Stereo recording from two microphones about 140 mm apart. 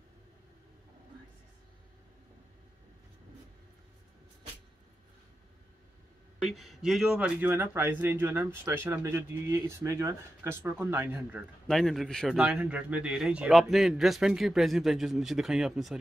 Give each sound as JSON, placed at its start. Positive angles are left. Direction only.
{"t": 6.4, "sound": "speech", "side_deg": 0}
{"t": 11.6, "sound": "speech", "side_deg": 5}